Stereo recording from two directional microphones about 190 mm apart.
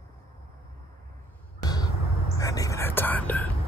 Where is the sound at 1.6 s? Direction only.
20° left (ahead or behind).